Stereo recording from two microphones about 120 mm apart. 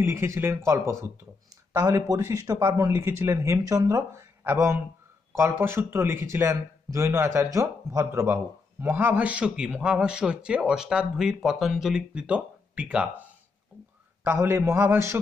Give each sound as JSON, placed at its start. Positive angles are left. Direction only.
{"t": 0.0, "sound": "a man's voice", "side_deg": -20}
{"t": 14.2, "sound": "a man's voice", "side_deg": -20}